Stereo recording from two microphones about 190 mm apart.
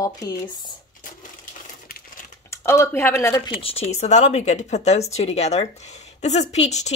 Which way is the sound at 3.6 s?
30° left (ahead or behind).